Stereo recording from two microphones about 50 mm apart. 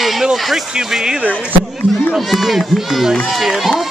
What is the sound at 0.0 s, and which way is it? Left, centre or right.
Speech, centre.